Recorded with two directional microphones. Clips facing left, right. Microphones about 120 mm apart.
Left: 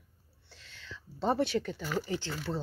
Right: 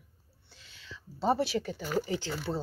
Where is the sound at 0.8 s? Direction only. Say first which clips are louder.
Right 1 dB; 5° right (ahead or behind).